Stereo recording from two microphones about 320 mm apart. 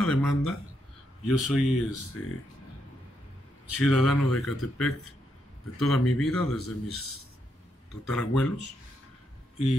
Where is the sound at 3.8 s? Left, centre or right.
Centre.